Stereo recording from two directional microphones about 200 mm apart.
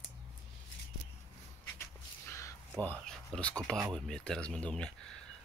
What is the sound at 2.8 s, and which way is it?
Speech, 5° left (ahead or behind).